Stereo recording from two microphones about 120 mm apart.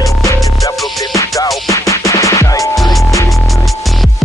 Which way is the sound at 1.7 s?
25° left (ahead or behind).